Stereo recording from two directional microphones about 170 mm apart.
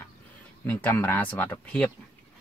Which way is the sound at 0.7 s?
10° left (ahead or behind).